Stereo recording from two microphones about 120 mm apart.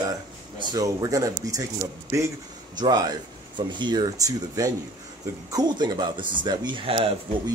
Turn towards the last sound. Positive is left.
turn(degrees=-45)  # may be behind; listen again after turning